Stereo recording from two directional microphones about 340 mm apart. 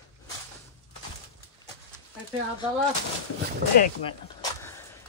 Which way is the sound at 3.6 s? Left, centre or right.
Right.